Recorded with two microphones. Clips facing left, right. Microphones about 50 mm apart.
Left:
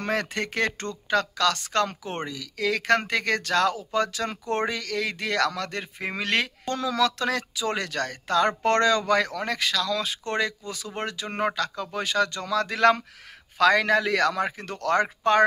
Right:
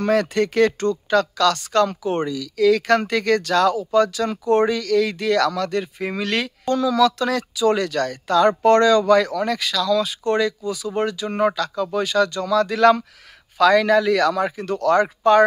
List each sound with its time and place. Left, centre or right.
0.0 s speech: left